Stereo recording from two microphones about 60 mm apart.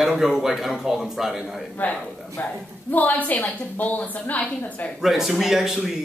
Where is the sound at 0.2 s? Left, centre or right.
Centre.